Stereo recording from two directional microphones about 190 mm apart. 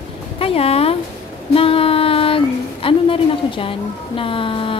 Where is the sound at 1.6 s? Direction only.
30° left (ahead or behind).